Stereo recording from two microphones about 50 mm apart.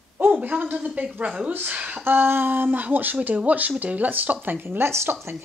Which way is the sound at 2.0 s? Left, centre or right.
Right.